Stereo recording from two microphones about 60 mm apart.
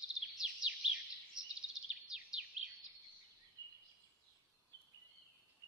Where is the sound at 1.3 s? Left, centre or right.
Centre.